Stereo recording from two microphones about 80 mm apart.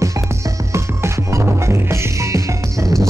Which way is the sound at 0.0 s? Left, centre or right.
Right.